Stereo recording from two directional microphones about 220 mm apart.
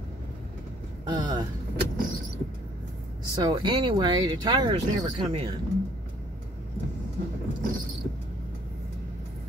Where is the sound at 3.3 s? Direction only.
20° right (ahead or behind).